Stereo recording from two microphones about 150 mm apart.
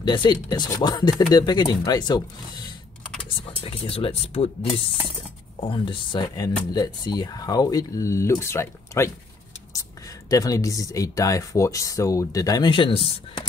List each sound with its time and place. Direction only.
0.0 s speech: 30° left (ahead or behind)
3.3 s speech: 40° left (ahead or behind)
5.6 s speech: 35° left (ahead or behind); by 9.1 s 15° left (ahead or behind)
10.3 s speech: 25° left (ahead or behind)